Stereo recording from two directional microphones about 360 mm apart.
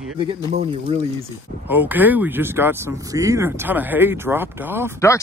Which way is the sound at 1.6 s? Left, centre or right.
Centre.